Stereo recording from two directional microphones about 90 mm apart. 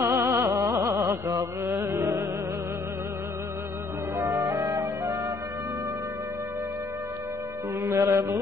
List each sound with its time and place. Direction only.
0.0 s music: 30° right (ahead or behind)
4.2 s music: 35° right (ahead or behind)
7.8 s music: 30° right (ahead or behind)